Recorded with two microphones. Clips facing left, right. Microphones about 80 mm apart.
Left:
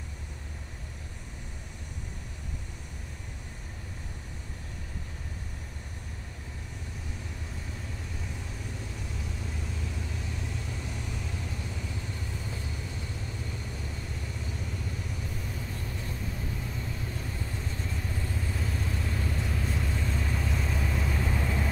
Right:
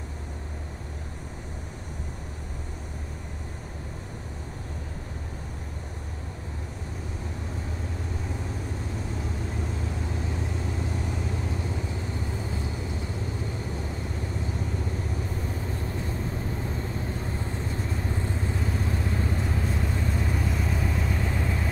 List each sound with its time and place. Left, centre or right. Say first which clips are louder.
18.1 s vehicle: right 5 dB; right
20.0 s vehicle: right 4 dB; centre